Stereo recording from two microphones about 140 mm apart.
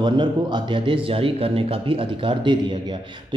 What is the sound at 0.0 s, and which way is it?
Speech, 35° right (ahead or behind).